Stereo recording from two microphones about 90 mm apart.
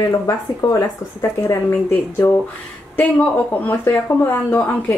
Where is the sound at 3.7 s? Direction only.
25° left (ahead or behind).